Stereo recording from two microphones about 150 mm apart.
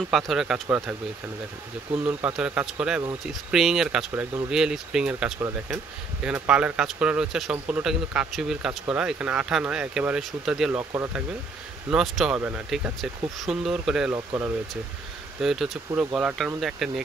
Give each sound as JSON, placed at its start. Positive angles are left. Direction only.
{"t": 0.1, "sound": "speech", "side_deg": 0}
{"t": 2.0, "sound": "speech", "side_deg": -10}
{"t": 4.5, "sound": "speech", "side_deg": -5}
{"t": 11.9, "sound": "speech", "side_deg": -5}
{"t": 14.1, "sound": "speech", "side_deg": -20}
{"t": 15.4, "sound": "speech", "side_deg": 0}